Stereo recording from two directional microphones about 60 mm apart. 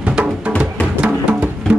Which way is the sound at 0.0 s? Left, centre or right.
Right.